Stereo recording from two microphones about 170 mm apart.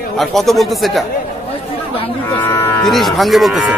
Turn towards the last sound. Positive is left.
turn(degrees=0)  # may be behind; listen again after turning